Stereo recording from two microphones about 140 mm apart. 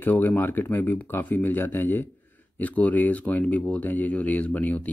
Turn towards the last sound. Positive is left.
turn(degrees=10)  # may be behind; listen again after turning